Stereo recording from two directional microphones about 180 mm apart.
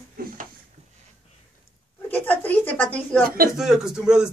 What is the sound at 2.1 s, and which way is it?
A woman's voice, 10° left (ahead or behind).